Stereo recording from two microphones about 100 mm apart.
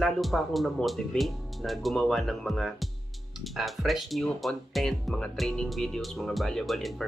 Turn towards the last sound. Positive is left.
turn(degrees=0)  # may be behind; listen again after turning